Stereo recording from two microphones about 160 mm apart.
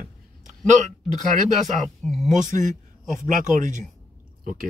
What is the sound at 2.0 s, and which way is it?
Speech, centre (ahead or behind).